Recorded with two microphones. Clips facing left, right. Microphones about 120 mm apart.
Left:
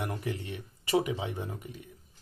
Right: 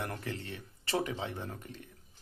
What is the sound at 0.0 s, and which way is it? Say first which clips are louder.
Speech: left 4 dB; 15° left (ahead or behind).